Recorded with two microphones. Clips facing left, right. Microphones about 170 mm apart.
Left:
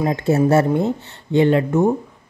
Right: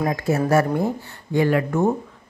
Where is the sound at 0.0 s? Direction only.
25° left (ahead or behind).